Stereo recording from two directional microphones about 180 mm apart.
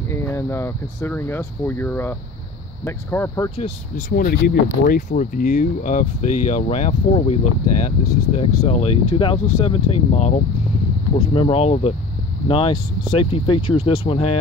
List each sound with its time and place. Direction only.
0.1 s speech: 15° left (ahead or behind)
3.5 s speech: 50° left (ahead or behind); by 14.4 s 30° left (ahead or behind)